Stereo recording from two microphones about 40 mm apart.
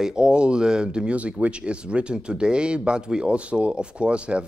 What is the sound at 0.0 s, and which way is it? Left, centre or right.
Speech, centre.